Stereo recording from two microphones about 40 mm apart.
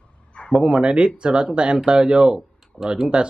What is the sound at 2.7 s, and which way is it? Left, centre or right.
Speech, left.